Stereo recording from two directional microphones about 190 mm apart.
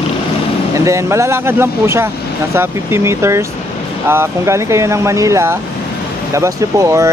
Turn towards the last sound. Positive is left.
turn(degrees=-15)  # may be behind; listen again after turning